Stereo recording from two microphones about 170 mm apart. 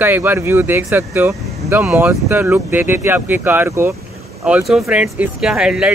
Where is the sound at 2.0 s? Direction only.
15° right (ahead or behind).